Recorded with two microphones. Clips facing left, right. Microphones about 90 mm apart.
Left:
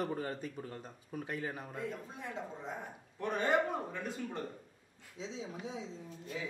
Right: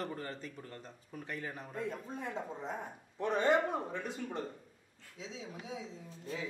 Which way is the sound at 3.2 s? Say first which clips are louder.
Right 2 dB; 20° right (ahead or behind).